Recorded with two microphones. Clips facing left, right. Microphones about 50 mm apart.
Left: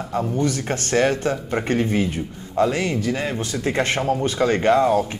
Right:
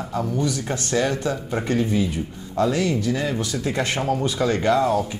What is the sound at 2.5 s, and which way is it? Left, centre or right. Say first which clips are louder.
Speech: left 1 dB; left.